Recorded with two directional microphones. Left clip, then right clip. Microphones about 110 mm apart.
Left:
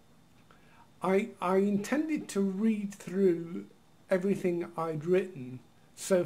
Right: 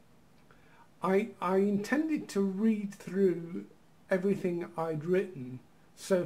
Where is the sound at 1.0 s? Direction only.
5° right (ahead or behind).